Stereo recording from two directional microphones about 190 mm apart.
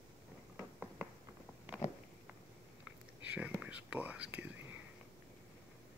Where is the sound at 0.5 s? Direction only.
5° right (ahead or behind).